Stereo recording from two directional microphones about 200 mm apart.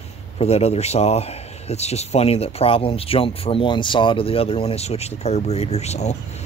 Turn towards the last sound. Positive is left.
turn(degrees=35)  # may be behind; listen again after turning